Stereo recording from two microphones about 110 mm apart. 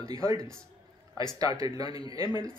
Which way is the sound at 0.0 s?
30° right (ahead or behind).